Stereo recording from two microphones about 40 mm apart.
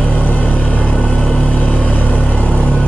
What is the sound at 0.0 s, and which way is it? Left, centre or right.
Vehicle, left.